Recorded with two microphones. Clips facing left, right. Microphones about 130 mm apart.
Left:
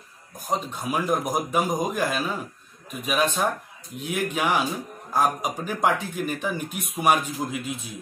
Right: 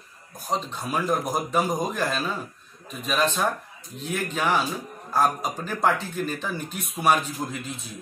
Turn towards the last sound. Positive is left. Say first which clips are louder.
# left 3 dB
turn(degrees=15)  # may be behind; listen again after turning